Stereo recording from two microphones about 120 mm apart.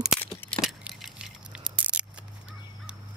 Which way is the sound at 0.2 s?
15° left (ahead or behind).